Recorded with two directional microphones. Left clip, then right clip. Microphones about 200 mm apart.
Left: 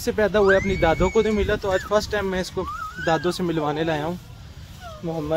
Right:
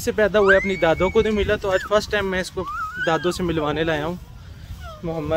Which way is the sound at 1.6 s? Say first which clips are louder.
Right 2 dB; centre (ahead or behind).